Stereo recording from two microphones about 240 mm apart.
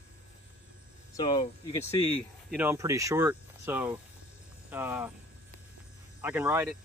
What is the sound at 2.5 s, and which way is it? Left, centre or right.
Speech, centre.